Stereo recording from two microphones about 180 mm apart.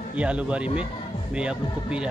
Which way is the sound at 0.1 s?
5° right (ahead or behind).